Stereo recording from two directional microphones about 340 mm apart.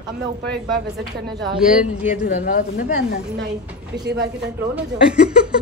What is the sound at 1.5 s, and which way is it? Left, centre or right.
Speech, centre.